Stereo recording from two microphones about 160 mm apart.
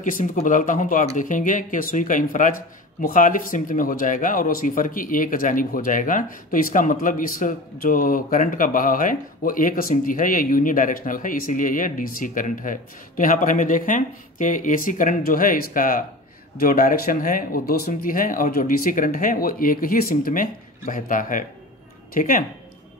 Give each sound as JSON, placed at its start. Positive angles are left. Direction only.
{"t": 0.0, "sound": "speech", "side_deg": 55}